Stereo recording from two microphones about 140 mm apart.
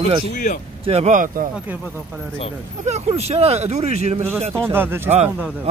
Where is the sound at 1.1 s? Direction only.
70° right (ahead or behind).